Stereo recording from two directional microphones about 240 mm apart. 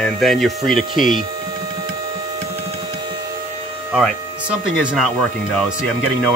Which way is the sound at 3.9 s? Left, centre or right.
Centre.